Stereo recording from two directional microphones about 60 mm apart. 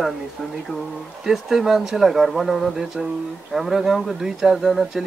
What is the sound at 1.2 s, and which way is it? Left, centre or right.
Speech, centre.